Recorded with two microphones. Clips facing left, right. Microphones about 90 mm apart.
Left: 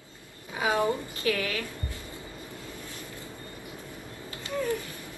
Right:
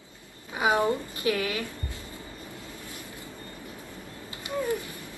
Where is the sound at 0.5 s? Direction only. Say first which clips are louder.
Right 2 dB; 20° right (ahead or behind).